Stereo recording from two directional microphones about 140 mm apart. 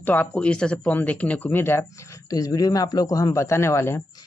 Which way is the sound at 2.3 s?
25° left (ahead or behind).